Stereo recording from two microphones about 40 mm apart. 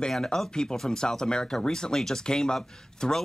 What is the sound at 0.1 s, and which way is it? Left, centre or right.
Speech, centre.